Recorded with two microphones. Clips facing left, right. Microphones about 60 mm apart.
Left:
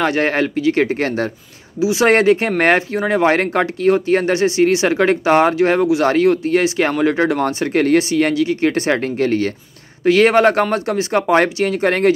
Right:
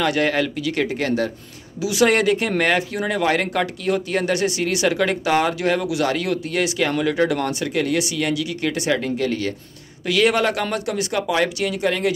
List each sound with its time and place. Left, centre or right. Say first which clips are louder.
0.0 s speech: left 3 dB; left